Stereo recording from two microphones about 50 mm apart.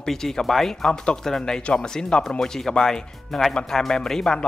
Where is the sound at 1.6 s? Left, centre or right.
Left.